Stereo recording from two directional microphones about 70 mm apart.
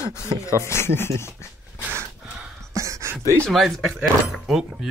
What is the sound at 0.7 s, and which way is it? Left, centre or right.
Speech, left.